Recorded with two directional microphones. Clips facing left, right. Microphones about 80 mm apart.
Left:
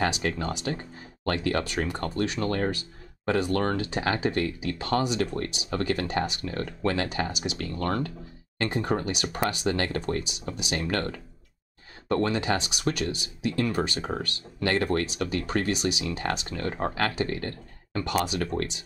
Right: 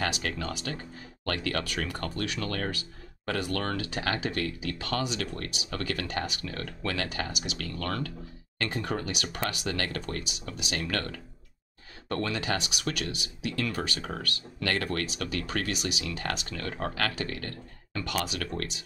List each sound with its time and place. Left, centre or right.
0.0 s speech: left